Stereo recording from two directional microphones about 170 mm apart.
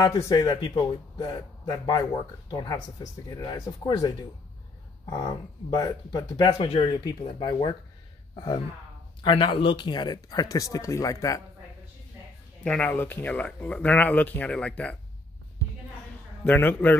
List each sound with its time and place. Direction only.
0.0 s speech: 20° left (ahead or behind)
5.1 s speech: 25° left (ahead or behind)
9.2 s speech: 30° left (ahead or behind)
12.6 s speech: 5° left (ahead or behind)
16.4 s speech: 10° left (ahead or behind)